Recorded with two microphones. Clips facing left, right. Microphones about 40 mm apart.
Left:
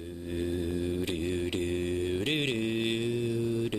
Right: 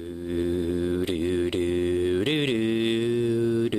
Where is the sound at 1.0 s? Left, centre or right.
Centre.